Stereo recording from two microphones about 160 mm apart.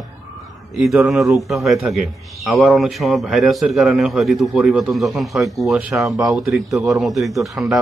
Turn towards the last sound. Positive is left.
turn(degrees=0)  # may be behind; listen again after turning